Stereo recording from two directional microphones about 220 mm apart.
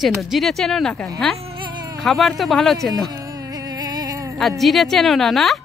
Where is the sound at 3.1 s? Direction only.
15° right (ahead or behind).